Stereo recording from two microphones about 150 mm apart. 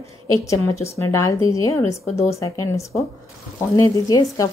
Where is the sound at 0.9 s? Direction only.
20° left (ahead or behind).